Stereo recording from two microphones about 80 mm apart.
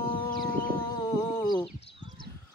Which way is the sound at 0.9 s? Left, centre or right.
Left.